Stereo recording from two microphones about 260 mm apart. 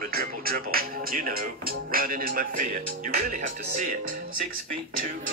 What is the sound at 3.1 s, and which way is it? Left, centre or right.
Music, right.